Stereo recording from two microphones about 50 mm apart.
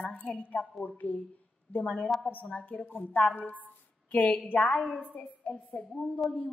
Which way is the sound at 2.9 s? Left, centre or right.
Left.